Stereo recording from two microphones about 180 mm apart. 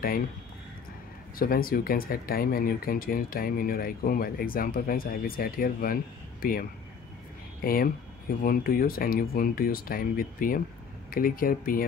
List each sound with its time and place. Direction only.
1.4 s speech: 55° left (ahead or behind)
7.6 s speech: 55° left (ahead or behind)